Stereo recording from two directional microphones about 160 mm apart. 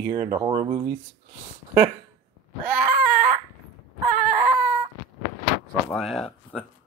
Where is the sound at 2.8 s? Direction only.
55° right (ahead or behind).